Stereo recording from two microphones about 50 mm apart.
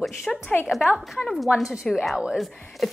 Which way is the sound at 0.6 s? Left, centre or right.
Centre.